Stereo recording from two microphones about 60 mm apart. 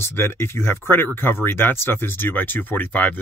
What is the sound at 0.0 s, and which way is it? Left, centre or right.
Speech, left.